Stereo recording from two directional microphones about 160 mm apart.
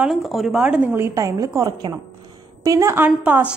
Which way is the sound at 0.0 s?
Centre (ahead or behind).